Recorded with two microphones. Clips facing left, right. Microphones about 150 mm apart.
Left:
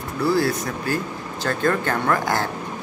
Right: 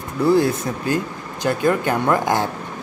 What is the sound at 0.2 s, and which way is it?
Speech, 20° right (ahead or behind).